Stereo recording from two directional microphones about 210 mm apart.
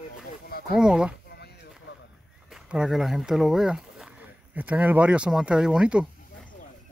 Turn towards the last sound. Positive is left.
turn(degrees=-5)  # may be behind; listen again after turning